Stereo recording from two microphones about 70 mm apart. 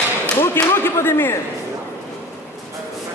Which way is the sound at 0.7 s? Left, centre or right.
Left.